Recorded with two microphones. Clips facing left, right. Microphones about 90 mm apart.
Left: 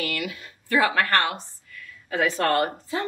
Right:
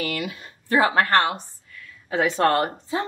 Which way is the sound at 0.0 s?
25° right (ahead or behind).